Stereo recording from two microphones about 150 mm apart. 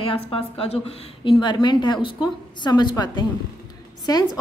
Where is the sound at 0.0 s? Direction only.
35° left (ahead or behind).